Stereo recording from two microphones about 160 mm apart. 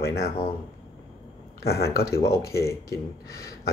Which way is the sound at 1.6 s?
80° left.